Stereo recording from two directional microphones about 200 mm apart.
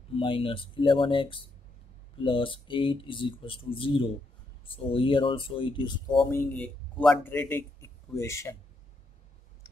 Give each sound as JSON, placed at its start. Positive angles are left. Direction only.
{"t": 0.1, "sound": "speech", "side_deg": 25}
{"t": 6.3, "sound": "a man's voice", "side_deg": 5}